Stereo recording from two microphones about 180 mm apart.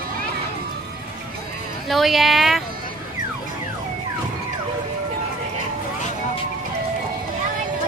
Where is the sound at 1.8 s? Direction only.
Centre (ahead or behind).